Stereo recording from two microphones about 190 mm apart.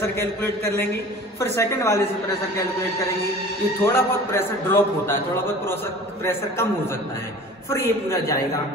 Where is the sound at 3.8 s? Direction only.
10° left (ahead or behind).